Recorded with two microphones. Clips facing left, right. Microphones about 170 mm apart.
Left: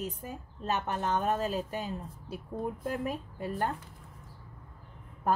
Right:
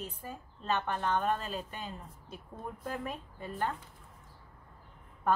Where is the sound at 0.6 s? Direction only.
40° left (ahead or behind).